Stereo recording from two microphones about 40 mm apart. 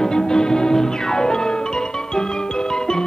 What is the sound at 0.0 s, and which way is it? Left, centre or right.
Music, centre.